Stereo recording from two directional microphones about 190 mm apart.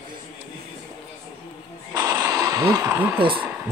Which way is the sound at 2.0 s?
20° right (ahead or behind).